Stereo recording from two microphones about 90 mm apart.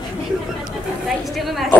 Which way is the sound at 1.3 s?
Centre (ahead or behind).